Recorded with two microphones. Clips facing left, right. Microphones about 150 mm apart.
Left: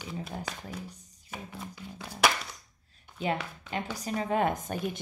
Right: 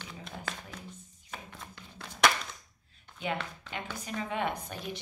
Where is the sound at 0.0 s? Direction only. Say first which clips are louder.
Left 7 dB; 5° left (ahead or behind).